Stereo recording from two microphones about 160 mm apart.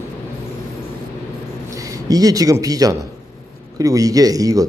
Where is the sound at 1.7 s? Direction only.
20° right (ahead or behind).